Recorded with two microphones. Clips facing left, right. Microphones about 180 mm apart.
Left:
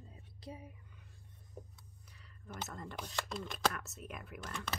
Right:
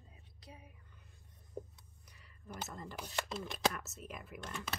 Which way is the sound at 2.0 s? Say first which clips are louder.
Right 1 dB; 10° right (ahead or behind).